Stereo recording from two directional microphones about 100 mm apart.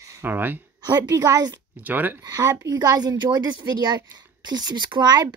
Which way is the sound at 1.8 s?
15° right (ahead or behind).